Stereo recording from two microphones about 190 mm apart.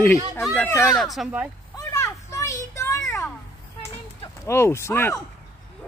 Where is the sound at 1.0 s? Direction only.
Centre (ahead or behind).